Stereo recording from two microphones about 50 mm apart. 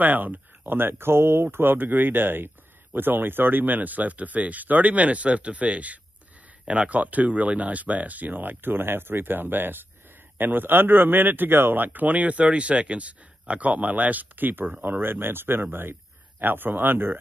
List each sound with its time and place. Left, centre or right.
0.0 s speech: right